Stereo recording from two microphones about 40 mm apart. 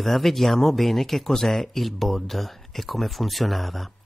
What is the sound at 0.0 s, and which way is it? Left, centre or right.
Speech, centre.